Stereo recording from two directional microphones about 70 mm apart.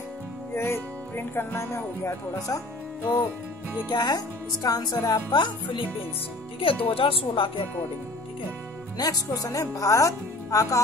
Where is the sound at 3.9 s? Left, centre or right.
Left.